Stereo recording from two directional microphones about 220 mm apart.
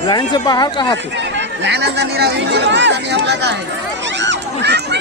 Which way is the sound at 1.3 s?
50° right (ahead or behind).